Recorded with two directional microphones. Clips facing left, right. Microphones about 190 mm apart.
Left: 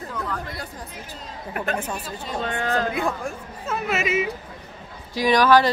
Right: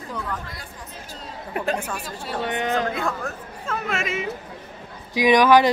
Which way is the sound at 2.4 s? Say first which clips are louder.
Right 1 dB; 20° right (ahead or behind).